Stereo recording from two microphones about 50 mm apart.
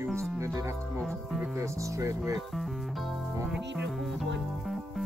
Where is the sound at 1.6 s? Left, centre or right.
Right.